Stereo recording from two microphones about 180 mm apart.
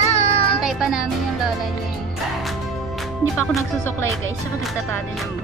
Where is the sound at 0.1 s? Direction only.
35° left (ahead or behind).